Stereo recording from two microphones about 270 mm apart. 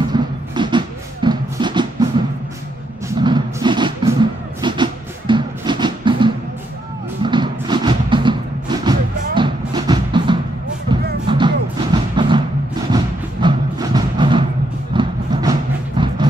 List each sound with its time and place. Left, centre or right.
0.1 s music: centre
16.0 s vehicle: centre